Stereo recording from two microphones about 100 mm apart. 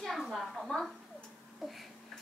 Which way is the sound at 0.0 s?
Centre (ahead or behind).